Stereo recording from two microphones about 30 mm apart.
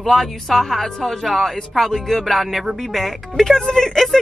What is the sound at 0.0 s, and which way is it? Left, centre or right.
Speech, centre.